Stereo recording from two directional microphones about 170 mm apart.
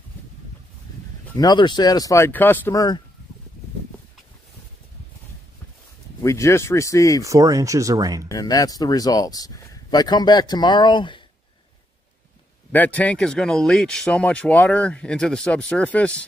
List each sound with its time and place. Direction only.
1.2 s speech: 20° left (ahead or behind)
6.2 s speech: 15° left (ahead or behind)
7.2 s speech: 20° right (ahead or behind)
8.3 s speech: 20° left (ahead or behind)
12.7 s speech: 10° left (ahead or behind)